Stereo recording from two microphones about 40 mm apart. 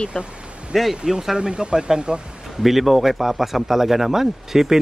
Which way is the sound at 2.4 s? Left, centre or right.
Centre.